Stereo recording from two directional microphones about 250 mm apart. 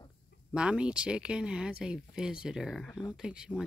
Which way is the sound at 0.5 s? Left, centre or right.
Centre.